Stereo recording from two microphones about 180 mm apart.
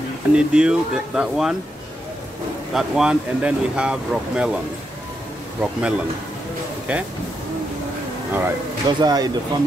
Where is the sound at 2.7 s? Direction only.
5° right (ahead or behind).